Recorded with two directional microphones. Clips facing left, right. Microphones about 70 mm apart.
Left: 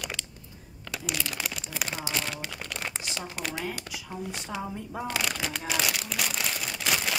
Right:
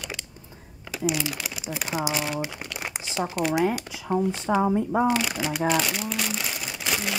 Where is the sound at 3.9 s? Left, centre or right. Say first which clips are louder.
Right 11 dB; right.